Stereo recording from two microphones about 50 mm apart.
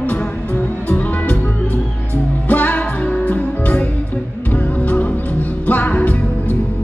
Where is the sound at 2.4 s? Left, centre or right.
Left.